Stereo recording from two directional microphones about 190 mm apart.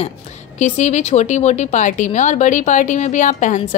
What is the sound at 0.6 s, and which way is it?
A woman's voice, 35° left (ahead or behind).